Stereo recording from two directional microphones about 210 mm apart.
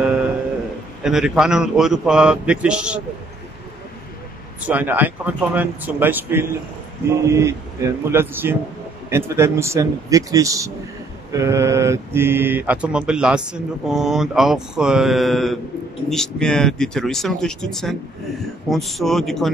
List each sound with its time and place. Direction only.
1.0 s speech: 5° right (ahead or behind)
4.6 s speech: 10° right (ahead or behind)